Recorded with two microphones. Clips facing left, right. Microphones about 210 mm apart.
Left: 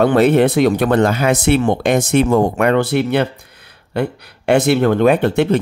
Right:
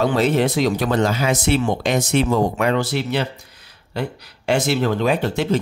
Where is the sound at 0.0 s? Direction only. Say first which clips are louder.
Left 6 dB; 60° left (ahead or behind).